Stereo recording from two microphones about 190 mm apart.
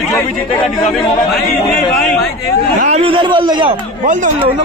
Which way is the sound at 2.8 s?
35° right (ahead or behind).